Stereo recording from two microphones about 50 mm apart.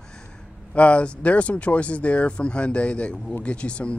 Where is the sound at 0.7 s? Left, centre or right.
Left.